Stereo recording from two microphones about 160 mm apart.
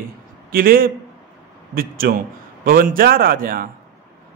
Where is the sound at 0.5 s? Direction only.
65° right (ahead or behind).